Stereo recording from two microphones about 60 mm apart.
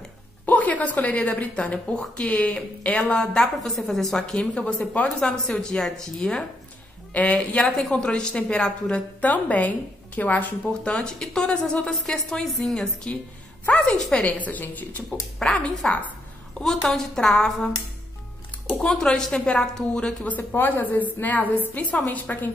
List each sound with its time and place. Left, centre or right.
0.5 s a woman's voice: left
3.0 s a woman's voice: centre
4.3 s a woman's voice: centre
7.1 s a woman's voice: left
9.2 s a woman's voice: left; by 12.8 s centre
13.0 s a woman's voice: left
13.9 s a woman's voice: centre
14.2 s a woman's voice: left
15.4 s a woman's voice: centre
16.8 s a woman's voice: centre
18.8 s a woman's voice: centre
20.2 s a woman's voice: left